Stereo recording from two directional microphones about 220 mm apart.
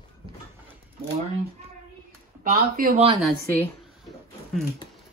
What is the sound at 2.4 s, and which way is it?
Speech, 40° right (ahead or behind).